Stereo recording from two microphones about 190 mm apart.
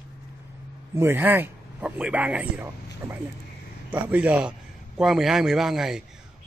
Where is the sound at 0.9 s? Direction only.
10° right (ahead or behind).